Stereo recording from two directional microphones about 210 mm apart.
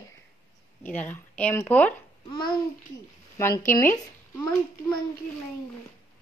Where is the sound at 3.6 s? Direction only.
35° left (ahead or behind).